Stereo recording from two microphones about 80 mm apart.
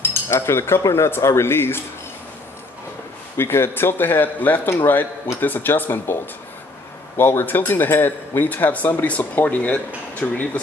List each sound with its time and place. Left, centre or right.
0.0 s cutlery: left
3.3 s a man's voice: left
7.2 s a man's voice: left